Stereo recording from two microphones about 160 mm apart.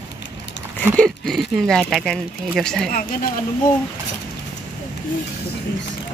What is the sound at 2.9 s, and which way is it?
Speech, 65° left (ahead or behind).